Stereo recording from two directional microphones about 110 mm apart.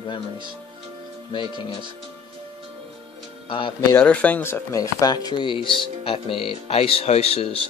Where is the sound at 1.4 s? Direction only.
45° right (ahead or behind).